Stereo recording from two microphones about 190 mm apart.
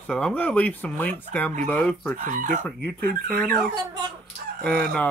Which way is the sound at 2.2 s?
45° right (ahead or behind).